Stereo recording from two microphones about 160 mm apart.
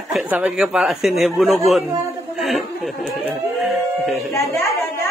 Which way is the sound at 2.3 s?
Centre (ahead or behind).